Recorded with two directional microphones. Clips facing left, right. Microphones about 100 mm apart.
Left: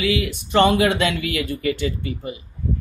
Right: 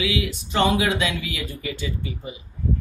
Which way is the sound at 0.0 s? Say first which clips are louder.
Left 3 dB; 55° left (ahead or behind).